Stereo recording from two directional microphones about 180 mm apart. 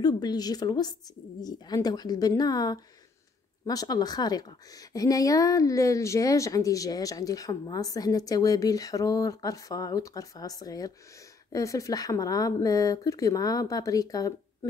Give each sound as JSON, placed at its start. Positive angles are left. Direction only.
{"t": 0.0, "sound": "a woman's voice", "side_deg": 20}